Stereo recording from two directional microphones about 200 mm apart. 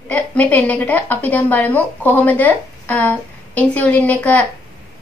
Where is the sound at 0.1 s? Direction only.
5° left (ahead or behind).